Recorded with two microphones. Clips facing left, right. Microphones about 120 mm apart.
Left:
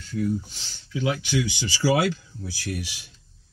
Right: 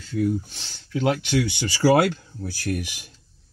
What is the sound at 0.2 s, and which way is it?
Speech, 60° right (ahead or behind).